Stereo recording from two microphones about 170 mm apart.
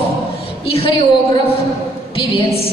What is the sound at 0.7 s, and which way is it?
Speech, 35° left (ahead or behind).